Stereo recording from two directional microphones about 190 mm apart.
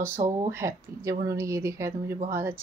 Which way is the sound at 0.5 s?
15° right (ahead or behind).